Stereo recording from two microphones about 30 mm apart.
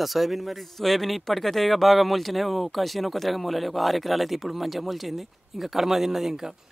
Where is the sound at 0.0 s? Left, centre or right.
Centre.